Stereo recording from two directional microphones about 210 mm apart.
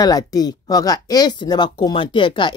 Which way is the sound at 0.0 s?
20° left (ahead or behind).